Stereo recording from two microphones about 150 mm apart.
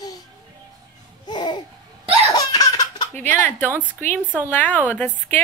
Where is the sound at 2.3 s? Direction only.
25° left (ahead or behind).